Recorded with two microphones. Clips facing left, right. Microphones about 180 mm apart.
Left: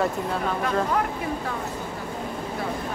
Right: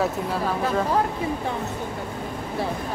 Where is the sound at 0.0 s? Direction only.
Centre (ahead or behind).